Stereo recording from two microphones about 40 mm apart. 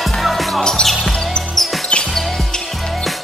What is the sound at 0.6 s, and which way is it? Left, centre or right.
Music, centre.